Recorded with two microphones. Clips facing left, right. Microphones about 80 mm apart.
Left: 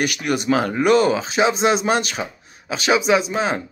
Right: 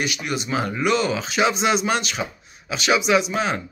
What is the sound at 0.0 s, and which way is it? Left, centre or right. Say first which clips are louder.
Speech: left 5 dB; left.